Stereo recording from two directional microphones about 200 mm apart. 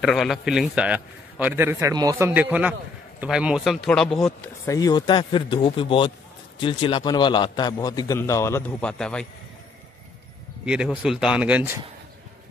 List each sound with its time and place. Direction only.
0.0 s a man's voice: centre (ahead or behind)
4.6 s a man's voice: 20° left (ahead or behind); by 9.3 s 5° left (ahead or behind)
10.6 s speech: 5° right (ahead or behind)